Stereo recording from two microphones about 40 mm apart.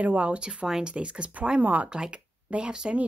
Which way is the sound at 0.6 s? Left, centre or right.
Centre.